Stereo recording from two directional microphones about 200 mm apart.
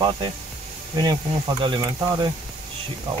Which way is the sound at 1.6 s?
20° right (ahead or behind).